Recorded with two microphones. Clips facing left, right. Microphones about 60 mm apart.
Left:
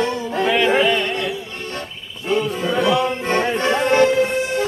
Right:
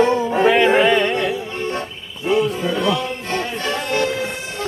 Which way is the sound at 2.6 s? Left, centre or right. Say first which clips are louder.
Left 2 dB; centre.